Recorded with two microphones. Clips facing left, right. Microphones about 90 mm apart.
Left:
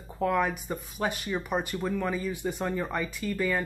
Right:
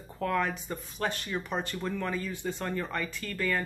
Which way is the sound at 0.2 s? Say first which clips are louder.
Left 3 dB; 10° left (ahead or behind).